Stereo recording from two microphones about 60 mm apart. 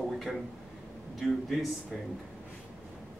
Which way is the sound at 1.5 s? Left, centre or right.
Centre.